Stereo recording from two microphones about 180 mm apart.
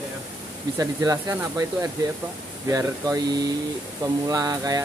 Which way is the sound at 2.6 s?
20° right (ahead or behind).